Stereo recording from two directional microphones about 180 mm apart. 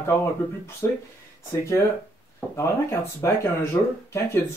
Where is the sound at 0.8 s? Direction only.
10° left (ahead or behind).